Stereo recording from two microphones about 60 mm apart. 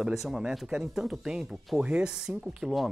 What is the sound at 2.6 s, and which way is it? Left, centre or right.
Speech, centre.